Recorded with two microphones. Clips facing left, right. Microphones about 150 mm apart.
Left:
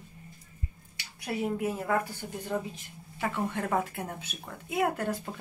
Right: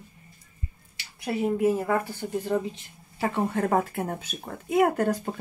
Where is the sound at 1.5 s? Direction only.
25° right (ahead or behind).